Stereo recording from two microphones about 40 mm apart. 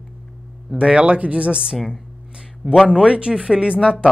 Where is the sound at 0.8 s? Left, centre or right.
Right.